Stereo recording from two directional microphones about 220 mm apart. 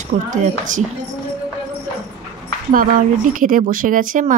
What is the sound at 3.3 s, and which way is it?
Speech, 35° right (ahead or behind).